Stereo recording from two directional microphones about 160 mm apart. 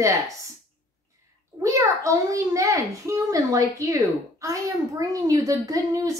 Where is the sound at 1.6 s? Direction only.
20° right (ahead or behind).